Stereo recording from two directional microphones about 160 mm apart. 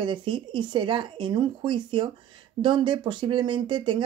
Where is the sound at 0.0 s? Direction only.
30° right (ahead or behind).